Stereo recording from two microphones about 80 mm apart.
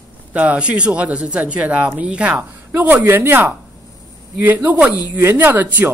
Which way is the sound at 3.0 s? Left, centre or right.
Right.